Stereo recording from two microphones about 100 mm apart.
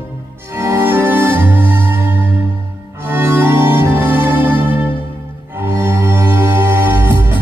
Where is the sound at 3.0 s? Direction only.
20° right (ahead or behind).